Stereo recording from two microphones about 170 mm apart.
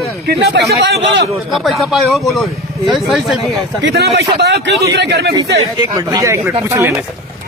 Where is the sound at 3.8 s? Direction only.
70° right (ahead or behind).